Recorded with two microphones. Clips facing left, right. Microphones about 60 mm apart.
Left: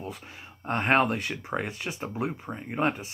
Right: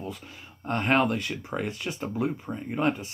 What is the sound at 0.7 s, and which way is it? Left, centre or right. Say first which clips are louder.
Speech: even; left.